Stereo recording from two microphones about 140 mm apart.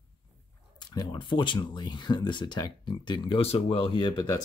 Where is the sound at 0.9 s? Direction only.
35° left (ahead or behind).